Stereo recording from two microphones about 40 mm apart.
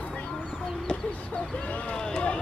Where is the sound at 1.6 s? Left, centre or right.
Left.